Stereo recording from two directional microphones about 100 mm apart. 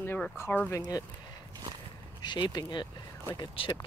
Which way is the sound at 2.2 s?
50° left (ahead or behind).